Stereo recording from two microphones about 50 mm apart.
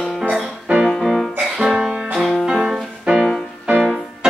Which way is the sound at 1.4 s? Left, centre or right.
Centre.